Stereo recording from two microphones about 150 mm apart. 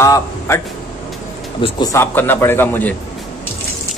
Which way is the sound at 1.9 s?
15° left (ahead or behind).